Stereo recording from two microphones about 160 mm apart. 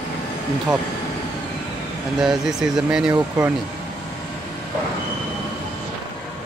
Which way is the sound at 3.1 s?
20° right (ahead or behind).